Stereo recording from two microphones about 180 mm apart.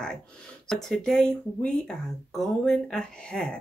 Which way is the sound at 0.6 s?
Centre (ahead or behind).